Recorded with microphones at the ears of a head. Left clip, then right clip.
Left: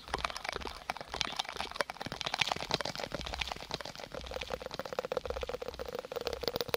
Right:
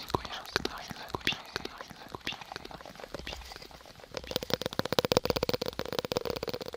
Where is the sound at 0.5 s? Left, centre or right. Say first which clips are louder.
Right 5 dB; right.